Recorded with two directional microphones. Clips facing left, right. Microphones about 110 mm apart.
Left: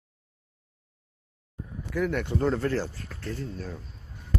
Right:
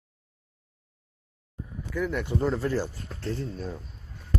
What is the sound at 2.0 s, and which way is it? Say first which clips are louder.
Speech: left 1 dB; 5° right (ahead or behind).